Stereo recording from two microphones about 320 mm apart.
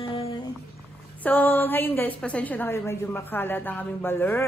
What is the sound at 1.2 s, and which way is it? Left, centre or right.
A woman's voice, centre.